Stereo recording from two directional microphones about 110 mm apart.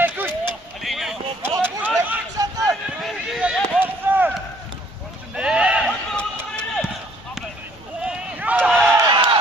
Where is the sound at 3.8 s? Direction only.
15° right (ahead or behind).